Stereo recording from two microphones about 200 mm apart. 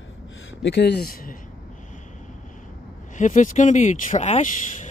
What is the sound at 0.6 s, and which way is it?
Speech, 60° left (ahead or behind).